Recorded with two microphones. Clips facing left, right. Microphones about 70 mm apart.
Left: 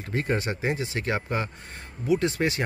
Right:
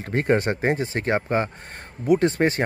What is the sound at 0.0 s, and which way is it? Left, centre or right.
A man's voice, right.